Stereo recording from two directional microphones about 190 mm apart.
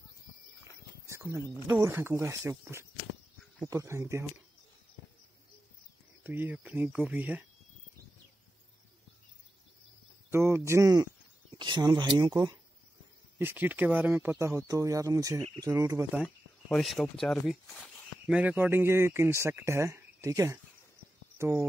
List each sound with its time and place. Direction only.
1.0 s a sound: 15° right (ahead or behind)
1.7 s speech: 15° right (ahead or behind)
6.2 s speech: 10° right (ahead or behind)
10.3 s speech: 15° right (ahead or behind)
13.4 s speech: 10° right (ahead or behind)
16.2 s speech: centre (ahead or behind)